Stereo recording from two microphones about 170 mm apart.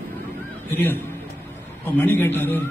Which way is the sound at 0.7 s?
10° left (ahead or behind).